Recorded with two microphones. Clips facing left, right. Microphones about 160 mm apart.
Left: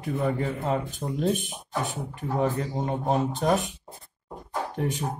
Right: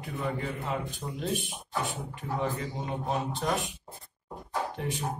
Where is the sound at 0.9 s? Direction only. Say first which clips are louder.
Left 6 dB; 45° left (ahead or behind).